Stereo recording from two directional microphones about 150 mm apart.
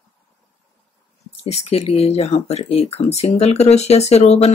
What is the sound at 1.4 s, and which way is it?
Speech, 45° left (ahead or behind).